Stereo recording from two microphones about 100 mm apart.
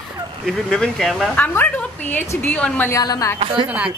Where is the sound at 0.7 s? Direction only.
5° left (ahead or behind).